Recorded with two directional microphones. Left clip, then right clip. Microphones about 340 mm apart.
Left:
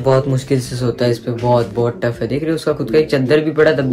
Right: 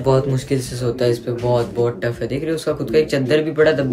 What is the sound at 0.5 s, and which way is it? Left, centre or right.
Speech, centre.